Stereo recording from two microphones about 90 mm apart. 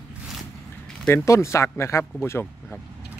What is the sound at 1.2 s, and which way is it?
Speech, 35° left (ahead or behind).